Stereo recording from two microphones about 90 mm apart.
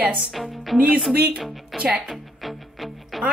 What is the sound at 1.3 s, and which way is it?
A woman's voice, centre (ahead or behind).